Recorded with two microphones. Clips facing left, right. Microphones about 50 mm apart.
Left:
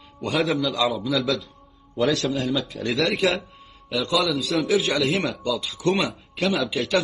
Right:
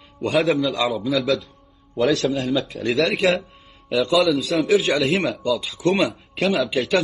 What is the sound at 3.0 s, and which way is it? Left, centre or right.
Speech, right.